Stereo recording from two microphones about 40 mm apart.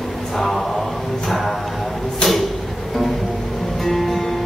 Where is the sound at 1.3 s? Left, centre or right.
Centre.